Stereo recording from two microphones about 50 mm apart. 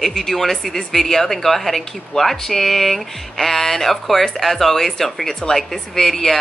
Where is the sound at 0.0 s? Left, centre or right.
Centre.